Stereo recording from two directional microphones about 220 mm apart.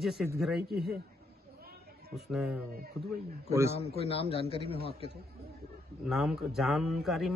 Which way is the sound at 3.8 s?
25° left (ahead or behind).